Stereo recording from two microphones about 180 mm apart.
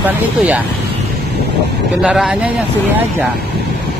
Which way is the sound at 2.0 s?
5° right (ahead or behind).